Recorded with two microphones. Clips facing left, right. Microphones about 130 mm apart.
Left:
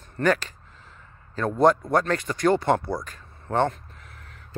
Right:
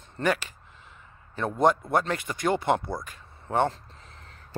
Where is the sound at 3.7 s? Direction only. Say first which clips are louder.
Left 2 dB; 25° right (ahead or behind).